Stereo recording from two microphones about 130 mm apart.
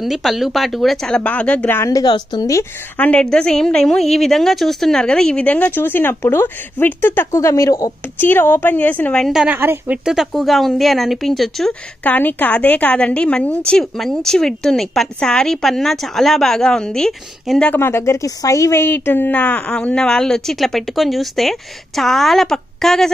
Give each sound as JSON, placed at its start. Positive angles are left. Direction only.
{"t": 0.0, "sound": "speech", "side_deg": 0}
{"t": 1.8, "sound": "a woman's voice", "side_deg": 25}
{"t": 3.0, "sound": "a woman's voice", "side_deg": 10}
{"t": 9.6, "sound": "a woman's voice", "side_deg": -15}
{"t": 10.0, "sound": "speech", "side_deg": 0}
{"t": 12.0, "sound": "a woman's voice", "side_deg": 15}
{"t": 17.7, "sound": "speech", "side_deg": 20}